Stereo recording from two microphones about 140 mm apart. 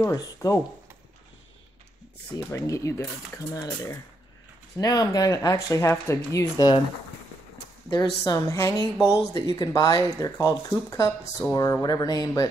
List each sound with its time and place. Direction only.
0.0 s speech: 25° left (ahead or behind)
2.3 s speech: 25° left (ahead or behind)
7.9 s speech: 25° left (ahead or behind)